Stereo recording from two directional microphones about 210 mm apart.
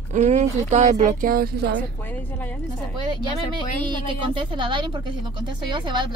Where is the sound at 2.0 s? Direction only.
5° left (ahead or behind).